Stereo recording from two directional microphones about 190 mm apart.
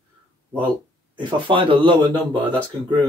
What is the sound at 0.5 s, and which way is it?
A man's voice, 25° right (ahead or behind).